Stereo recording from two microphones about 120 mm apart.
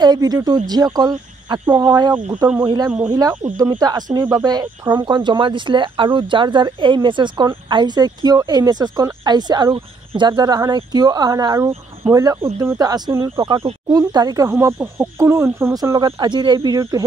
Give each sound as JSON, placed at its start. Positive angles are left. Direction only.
{"t": 0.0, "sound": "speech", "side_deg": -35}
{"t": 15.7, "sound": "speech", "side_deg": -30}